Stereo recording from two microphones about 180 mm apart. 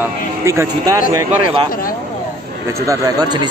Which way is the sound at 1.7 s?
50° left (ahead or behind).